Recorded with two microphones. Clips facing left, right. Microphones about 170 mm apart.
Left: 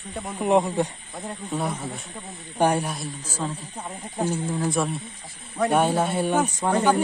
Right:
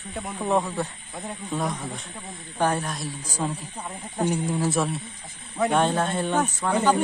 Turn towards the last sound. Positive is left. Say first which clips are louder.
# left 1 dB
turn(degrees=10)  # may be behind; listen again after turning